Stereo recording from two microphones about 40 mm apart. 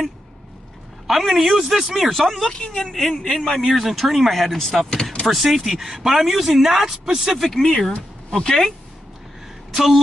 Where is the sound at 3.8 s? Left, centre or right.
Centre.